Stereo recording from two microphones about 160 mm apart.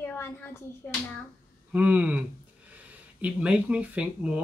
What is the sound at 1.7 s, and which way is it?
Speech, 10° right (ahead or behind).